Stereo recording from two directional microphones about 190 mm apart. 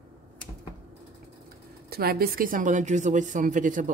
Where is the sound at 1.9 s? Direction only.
55° right (ahead or behind).